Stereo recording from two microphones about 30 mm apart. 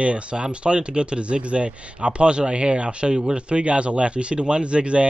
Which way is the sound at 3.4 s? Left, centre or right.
Right.